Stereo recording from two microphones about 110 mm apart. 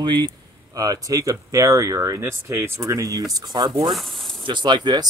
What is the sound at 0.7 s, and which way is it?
Speech, 35° right (ahead or behind).